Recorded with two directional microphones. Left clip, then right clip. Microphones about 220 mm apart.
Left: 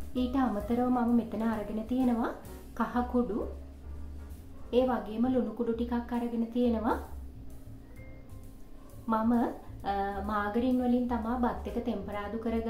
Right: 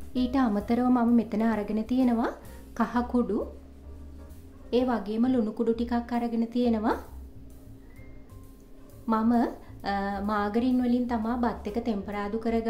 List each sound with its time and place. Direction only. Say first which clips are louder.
0.1 s a woman's voice: right 4 dB; 40° right (ahead or behind)
4.6 s a woman's voice: right 1 dB; 45° right (ahead or behind)
9.0 s a woman's voice: right 3 dB; 45° right (ahead or behind)